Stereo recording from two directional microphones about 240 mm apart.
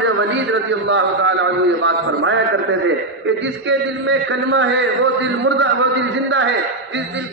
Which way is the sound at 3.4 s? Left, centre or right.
Right.